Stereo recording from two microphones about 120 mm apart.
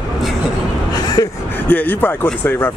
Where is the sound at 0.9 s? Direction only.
30° left (ahead or behind).